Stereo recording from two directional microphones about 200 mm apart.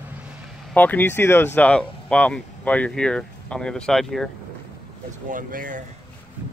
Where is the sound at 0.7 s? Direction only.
10° left (ahead or behind).